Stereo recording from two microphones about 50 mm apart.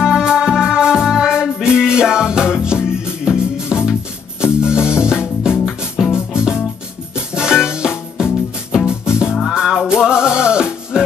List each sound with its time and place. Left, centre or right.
0.0 s music: centre